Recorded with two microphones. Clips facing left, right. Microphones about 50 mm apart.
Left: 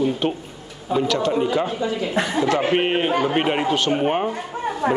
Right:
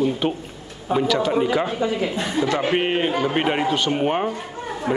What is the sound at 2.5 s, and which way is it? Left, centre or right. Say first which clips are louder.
A man's voice: left 1 dB; centre.